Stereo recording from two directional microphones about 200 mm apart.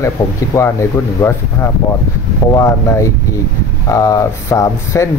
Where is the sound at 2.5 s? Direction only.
15° left (ahead or behind).